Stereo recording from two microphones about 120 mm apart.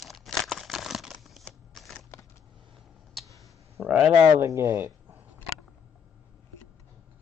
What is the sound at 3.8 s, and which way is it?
Speech, centre (ahead or behind).